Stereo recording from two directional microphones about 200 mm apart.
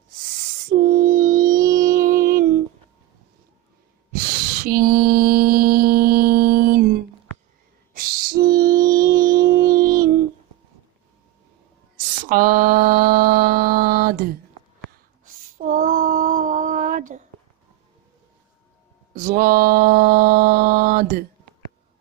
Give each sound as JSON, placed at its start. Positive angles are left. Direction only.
{"t": 0.7, "sound": "music", "side_deg": -45}
{"t": 4.6, "sound": "mantra", "side_deg": -45}
{"t": 7.9, "sound": "music", "side_deg": -45}
{"t": 12.2, "sound": "mantra", "side_deg": -45}
{"t": 14.9, "sound": "female singing", "side_deg": -45}
{"t": 19.1, "sound": "mantra", "side_deg": -45}